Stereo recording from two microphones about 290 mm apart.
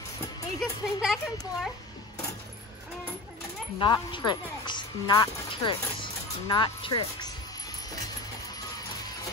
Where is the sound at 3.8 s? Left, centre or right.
Centre.